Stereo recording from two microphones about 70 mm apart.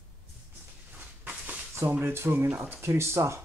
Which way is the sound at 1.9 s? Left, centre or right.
Right.